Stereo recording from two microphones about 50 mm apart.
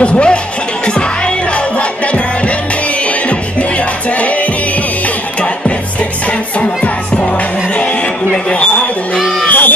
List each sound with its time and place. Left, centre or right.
0.0 s speech: left
0.8 s music: left
8.3 s a sound: left
9.5 s music: left